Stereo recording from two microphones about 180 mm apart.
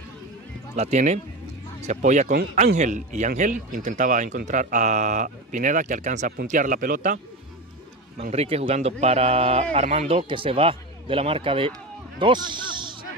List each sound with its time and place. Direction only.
0.7 s speech: 40° right (ahead or behind)
8.2 s speech: 35° right (ahead or behind)